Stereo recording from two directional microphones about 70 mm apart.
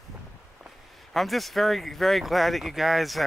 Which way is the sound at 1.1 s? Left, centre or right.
Centre.